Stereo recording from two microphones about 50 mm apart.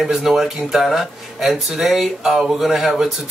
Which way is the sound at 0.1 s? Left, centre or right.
Centre.